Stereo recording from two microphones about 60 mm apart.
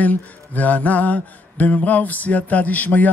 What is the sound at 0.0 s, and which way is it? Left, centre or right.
Mantra, left.